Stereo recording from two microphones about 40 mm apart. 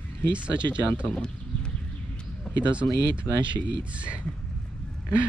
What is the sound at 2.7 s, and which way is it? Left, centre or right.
Speech, right.